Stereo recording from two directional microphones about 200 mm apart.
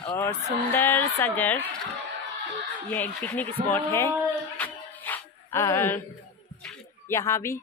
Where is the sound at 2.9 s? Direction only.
10° left (ahead or behind).